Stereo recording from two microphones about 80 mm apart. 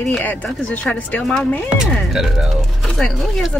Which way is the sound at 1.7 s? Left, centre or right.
Centre.